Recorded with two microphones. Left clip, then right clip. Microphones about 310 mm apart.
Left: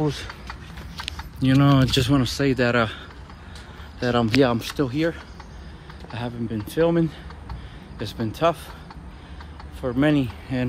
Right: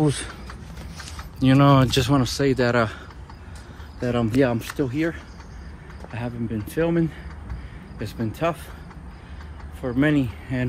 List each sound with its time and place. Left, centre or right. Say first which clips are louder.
0.0 s speech: right 3 dB; right
1.4 s speech: right 3 dB; centre
4.0 s speech: left 2 dB; centre
9.8 s speech: left 1 dB; centre